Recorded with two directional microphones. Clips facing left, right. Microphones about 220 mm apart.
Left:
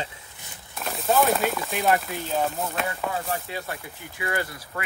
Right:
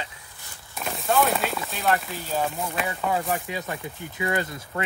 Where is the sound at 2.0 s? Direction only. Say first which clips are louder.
Left 1 dB; centre (ahead or behind).